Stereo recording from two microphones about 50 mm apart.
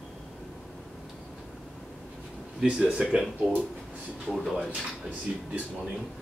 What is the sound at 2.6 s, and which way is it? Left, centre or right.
Speech, centre.